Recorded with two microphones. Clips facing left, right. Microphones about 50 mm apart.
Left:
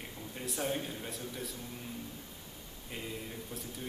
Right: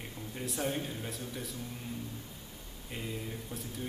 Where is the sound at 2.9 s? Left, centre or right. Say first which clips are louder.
Right 2 dB; centre.